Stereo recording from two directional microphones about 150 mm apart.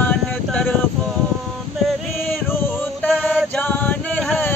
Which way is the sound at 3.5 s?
10° left (ahead or behind).